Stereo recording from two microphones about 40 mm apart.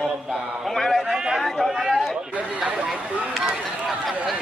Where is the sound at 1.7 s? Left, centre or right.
Centre.